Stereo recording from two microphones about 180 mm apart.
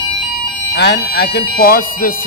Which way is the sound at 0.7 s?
60° left (ahead or behind).